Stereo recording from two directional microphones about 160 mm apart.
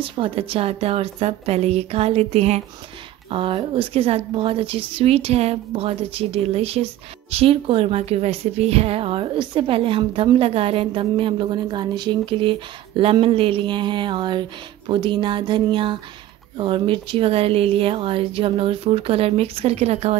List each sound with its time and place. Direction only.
0.0 s a woman's voice: 35° right (ahead or behind)